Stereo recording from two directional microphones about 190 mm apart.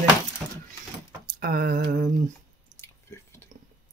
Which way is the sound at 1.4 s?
50° right (ahead or behind).